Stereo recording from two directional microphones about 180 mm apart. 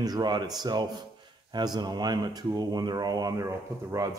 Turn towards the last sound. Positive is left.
turn(degrees=-20)  # may be behind; listen again after turning